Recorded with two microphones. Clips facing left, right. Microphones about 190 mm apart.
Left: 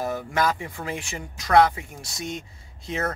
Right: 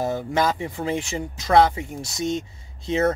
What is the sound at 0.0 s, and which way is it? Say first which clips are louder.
Speech: right 2 dB; 25° right (ahead or behind).